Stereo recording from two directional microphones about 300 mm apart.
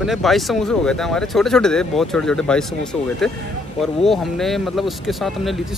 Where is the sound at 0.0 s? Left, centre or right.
Centre.